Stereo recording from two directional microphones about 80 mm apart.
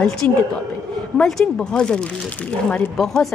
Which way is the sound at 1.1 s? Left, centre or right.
Centre.